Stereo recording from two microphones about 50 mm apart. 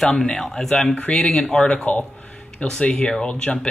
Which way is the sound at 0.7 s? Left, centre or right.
Left.